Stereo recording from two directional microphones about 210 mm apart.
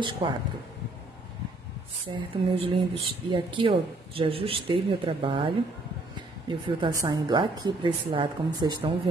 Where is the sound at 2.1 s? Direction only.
25° right (ahead or behind).